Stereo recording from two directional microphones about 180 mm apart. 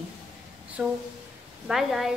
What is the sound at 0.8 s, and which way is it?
A woman's voice, 5° right (ahead or behind).